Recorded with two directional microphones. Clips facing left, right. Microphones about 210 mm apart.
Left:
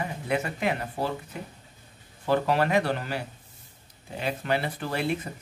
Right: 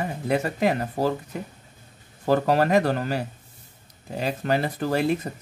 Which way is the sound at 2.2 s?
40° right (ahead or behind).